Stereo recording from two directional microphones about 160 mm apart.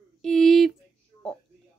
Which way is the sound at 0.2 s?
Centre (ahead or behind).